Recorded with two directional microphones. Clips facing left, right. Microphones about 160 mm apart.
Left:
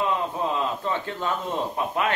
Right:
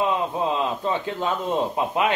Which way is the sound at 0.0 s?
20° right (ahead or behind).